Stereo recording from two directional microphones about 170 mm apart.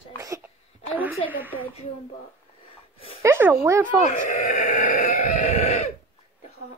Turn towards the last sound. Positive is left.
turn(degrees=40)  # may be behind; listen again after turning